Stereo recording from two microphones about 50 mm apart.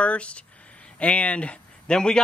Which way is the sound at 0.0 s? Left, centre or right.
Left.